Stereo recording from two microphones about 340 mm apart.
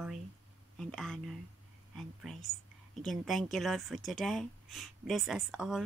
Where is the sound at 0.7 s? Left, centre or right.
Centre.